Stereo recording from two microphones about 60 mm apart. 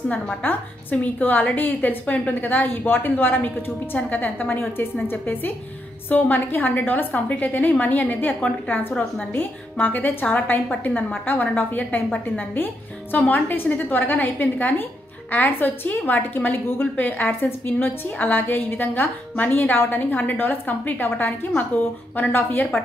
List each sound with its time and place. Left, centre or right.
0.1 s a woman's voice: left